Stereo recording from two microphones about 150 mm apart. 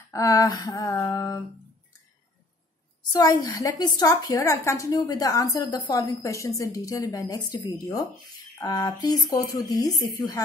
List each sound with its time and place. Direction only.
0.1 s a woman's voice: 25° left (ahead or behind)
3.1 s a woman's voice: 25° left (ahead or behind)